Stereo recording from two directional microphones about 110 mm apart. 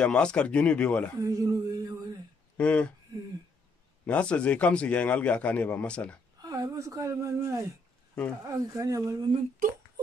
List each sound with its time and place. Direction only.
0.0 s a man's voice: 10° left (ahead or behind)
1.2 s a sound: 30° right (ahead or behind)
2.5 s speech: 10° left (ahead or behind)
4.0 s a man's voice: 10° left (ahead or behind)
6.4 s speech: 35° right (ahead or behind)